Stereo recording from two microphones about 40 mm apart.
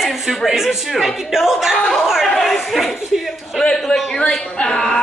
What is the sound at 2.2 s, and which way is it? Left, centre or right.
Chatter, centre.